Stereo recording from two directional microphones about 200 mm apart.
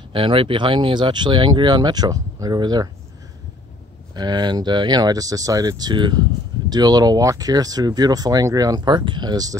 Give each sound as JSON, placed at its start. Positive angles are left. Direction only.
{"t": 0.1, "sound": "speech", "side_deg": -25}
{"t": 4.1, "sound": "speech", "side_deg": -20}